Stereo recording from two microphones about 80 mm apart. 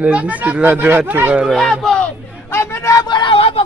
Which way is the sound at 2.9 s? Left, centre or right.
Left.